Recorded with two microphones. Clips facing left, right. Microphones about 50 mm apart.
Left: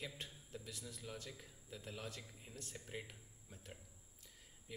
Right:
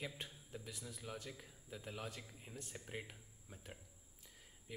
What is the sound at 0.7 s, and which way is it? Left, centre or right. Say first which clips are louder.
Speech: right 2 dB; centre.